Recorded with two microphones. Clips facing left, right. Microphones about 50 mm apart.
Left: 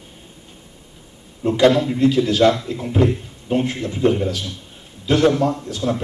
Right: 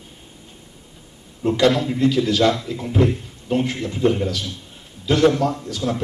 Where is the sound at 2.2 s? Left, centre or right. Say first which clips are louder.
Left 2 dB; centre.